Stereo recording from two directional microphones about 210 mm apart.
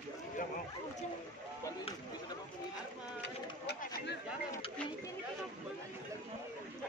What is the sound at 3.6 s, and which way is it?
Bird, 55° left (ahead or behind).